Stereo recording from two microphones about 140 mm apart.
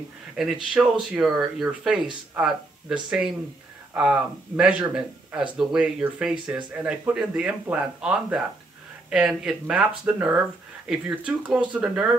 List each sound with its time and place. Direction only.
0.4 s speech: centre (ahead or behind)